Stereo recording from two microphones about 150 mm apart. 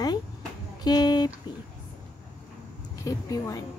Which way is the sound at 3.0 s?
20° left (ahead or behind).